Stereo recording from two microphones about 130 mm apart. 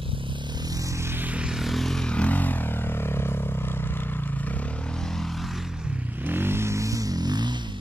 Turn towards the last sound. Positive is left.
turn(degrees=-35)  # may be behind; listen again after turning